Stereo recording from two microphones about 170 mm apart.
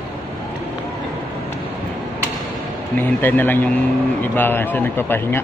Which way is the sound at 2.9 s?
10° left (ahead or behind).